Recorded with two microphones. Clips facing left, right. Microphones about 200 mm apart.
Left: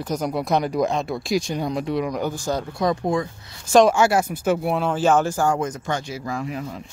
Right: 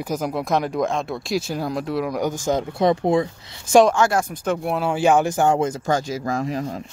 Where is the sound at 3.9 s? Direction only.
10° left (ahead or behind).